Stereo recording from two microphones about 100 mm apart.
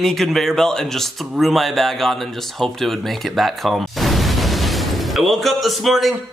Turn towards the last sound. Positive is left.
turn(degrees=0)  # may be behind; listen again after turning